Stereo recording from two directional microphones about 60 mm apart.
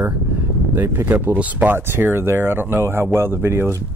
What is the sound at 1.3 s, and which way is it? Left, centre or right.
Speech, right.